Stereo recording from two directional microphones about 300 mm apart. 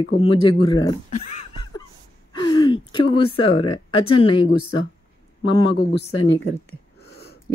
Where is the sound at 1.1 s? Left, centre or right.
Left.